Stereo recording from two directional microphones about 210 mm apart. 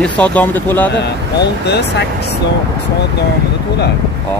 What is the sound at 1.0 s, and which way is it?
Speech, 55° left (ahead or behind).